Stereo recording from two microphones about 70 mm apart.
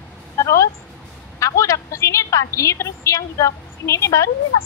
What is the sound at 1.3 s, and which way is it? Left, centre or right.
A woman's voice, left.